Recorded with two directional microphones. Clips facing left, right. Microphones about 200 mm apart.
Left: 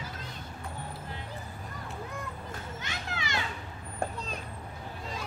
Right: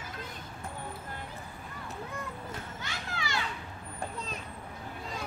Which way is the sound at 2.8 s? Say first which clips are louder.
Left 1 dB; 20° left (ahead or behind).